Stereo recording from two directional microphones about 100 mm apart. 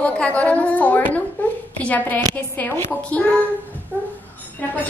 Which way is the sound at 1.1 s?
15° left (ahead or behind).